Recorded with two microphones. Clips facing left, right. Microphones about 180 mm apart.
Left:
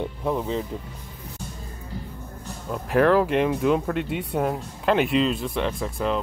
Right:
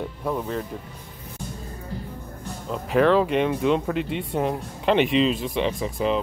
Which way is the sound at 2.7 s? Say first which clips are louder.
Even; 5° left (ahead or behind).